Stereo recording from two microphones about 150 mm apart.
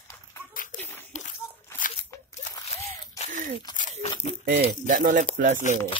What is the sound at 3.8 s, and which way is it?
Crumpling, 55° left (ahead or behind).